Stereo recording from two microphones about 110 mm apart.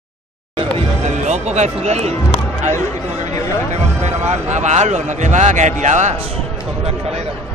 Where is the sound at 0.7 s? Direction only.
85° right.